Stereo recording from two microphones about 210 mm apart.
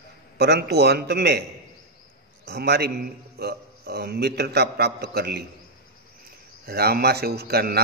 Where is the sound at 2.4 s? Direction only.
50° right (ahead or behind).